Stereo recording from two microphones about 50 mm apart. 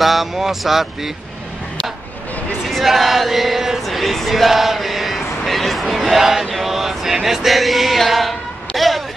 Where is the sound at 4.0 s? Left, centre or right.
Centre.